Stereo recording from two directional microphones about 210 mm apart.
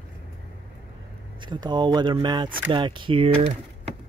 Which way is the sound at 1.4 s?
20° right (ahead or behind).